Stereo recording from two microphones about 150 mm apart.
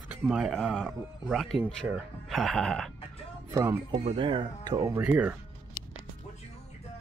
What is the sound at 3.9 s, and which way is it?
Speech, 35° right (ahead or behind).